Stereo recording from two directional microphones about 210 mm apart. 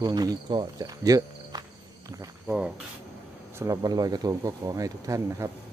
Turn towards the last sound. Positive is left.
turn(degrees=-15)  # may be behind; listen again after turning